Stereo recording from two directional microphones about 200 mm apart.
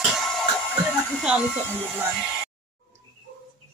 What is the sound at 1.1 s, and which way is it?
Speech, centre (ahead or behind).